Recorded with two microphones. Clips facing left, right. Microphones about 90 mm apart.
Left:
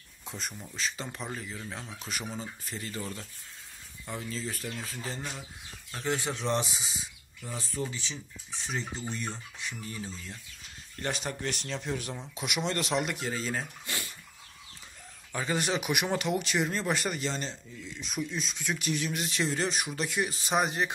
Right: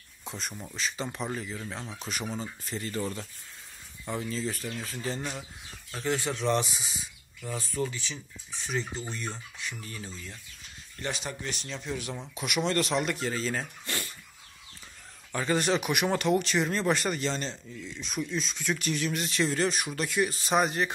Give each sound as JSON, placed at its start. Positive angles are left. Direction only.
{"t": 0.2, "sound": "speech", "side_deg": 0}
{"t": 4.1, "sound": "speech", "side_deg": 0}
{"t": 6.0, "sound": "speech", "side_deg": 15}
{"t": 7.8, "sound": "speech", "side_deg": 25}
{"t": 11.0, "sound": "speech", "side_deg": 45}
{"t": 11.4, "sound": "speech", "side_deg": 60}
{"t": 12.4, "sound": "speech", "side_deg": 20}
{"t": 15.3, "sound": "speech", "side_deg": 10}